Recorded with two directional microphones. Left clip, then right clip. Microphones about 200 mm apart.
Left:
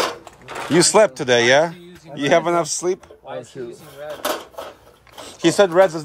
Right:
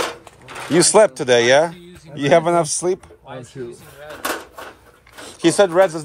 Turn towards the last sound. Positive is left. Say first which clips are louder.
# even
turn(degrees=25)  # may be behind; listen again after turning